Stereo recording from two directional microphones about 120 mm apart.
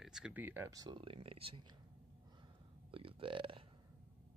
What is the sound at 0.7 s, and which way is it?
Speech, 35° right (ahead or behind).